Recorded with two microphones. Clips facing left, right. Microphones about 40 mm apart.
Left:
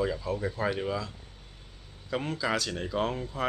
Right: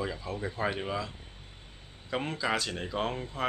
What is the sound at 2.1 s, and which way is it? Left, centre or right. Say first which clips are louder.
Speech: left 1 dB; centre.